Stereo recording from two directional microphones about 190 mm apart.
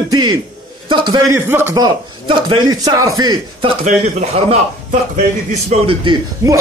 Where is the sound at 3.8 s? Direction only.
35° right (ahead or behind).